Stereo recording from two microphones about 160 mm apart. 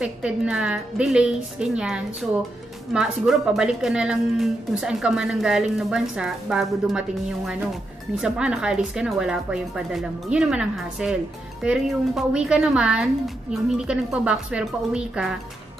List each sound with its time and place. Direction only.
0.0 s a woman's voice: 5° right (ahead or behind)